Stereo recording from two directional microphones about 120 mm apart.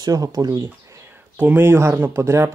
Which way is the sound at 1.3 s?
15° right (ahead or behind).